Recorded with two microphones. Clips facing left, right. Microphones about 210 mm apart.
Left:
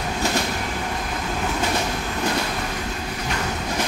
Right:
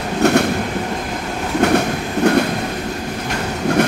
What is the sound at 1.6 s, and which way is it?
Train, 65° right (ahead or behind).